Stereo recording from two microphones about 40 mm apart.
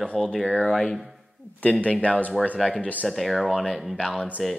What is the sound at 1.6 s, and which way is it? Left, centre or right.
Speech, left.